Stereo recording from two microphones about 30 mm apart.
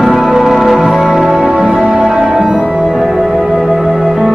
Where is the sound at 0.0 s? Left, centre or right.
Centre.